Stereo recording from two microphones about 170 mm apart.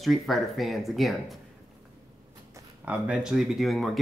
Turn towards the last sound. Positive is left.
turn(degrees=0)  # may be behind; listen again after turning